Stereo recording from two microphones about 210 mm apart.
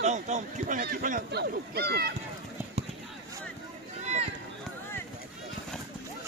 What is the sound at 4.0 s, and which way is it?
Run, 30° right (ahead or behind).